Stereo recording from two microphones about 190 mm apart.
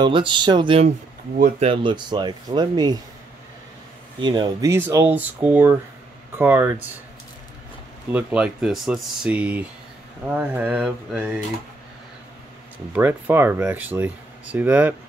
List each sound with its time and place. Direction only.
0.0 s speech: 25° right (ahead or behind)
4.2 s speech: 25° right (ahead or behind)
8.1 s speech: 5° right (ahead or behind)
12.9 s speech: 10° right (ahead or behind)